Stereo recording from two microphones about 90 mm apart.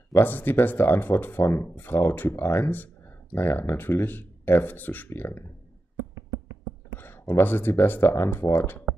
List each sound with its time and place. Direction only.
0.1 s speech: 20° left (ahead or behind)
7.0 s speech: 25° left (ahead or behind)